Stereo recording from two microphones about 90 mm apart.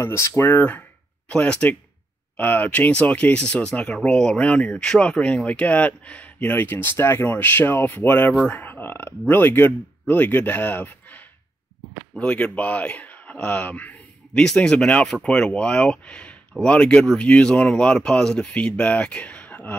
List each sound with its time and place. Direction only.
0.0 s speech: 30° left (ahead or behind)